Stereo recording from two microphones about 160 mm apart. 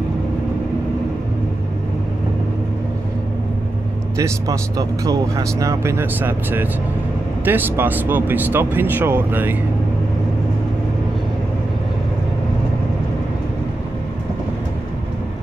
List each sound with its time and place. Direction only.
4.2 s speech: 20° right (ahead or behind)